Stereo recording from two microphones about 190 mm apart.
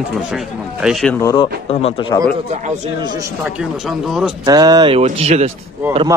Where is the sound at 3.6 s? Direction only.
Centre (ahead or behind).